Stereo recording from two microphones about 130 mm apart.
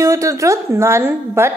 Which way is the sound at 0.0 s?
25° right (ahead or behind).